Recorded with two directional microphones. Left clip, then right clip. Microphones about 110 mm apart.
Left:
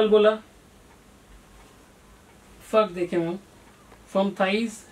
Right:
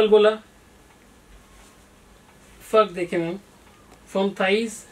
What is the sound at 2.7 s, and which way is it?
Speech, 5° right (ahead or behind).